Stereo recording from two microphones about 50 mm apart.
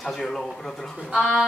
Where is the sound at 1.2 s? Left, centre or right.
Centre.